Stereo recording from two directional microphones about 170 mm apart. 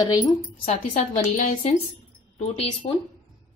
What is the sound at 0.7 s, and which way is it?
A woman's voice, 40° left (ahead or behind).